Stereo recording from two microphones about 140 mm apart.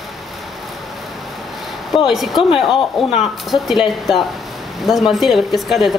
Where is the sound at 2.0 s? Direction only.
Centre (ahead or behind).